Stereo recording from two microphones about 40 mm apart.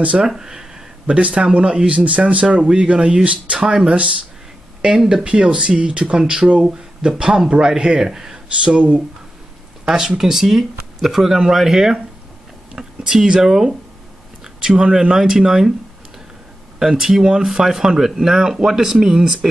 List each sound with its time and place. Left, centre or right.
0.3 s a sound: centre
1.1 s speech: right
2.4 s speech: right
5.2 s speech: right
8.6 s speech: right
9.8 s speech: centre
16.8 s speech: centre